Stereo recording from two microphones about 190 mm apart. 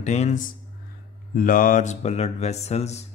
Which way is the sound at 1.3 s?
45° left (ahead or behind).